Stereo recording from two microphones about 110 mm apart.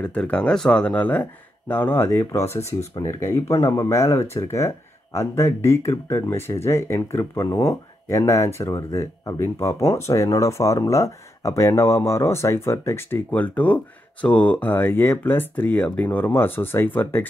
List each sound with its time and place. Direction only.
0.0 s speech: 10° left (ahead or behind)